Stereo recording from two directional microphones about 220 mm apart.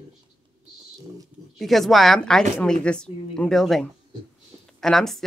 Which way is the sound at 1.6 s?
Centre (ahead or behind).